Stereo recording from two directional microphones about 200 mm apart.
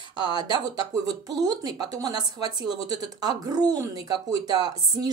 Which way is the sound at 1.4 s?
20° right (ahead or behind).